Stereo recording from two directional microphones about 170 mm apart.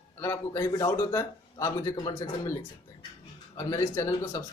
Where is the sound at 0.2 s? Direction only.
15° left (ahead or behind).